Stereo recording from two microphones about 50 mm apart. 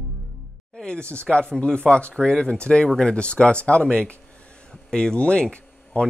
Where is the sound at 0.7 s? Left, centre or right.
Centre.